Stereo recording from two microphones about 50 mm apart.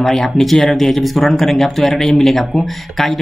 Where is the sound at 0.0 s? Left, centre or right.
Centre.